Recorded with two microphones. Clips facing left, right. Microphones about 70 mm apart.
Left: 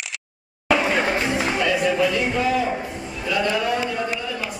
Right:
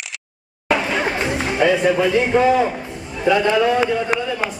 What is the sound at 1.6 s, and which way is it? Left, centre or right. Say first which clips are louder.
A man's voice: right 6 dB; right.